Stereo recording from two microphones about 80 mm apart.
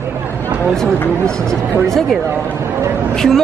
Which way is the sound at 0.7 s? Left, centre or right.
Centre.